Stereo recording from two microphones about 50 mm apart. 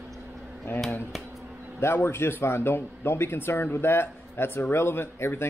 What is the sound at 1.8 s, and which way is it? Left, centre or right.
A man's voice, left.